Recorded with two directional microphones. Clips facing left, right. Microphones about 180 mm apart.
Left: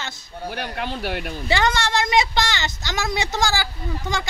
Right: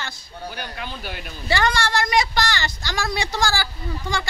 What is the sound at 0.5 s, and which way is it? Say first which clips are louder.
Speech: left 8 dB; 65° left (ahead or behind).